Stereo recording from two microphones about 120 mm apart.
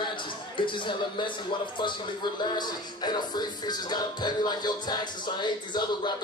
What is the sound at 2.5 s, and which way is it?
Music, 35° left (ahead or behind).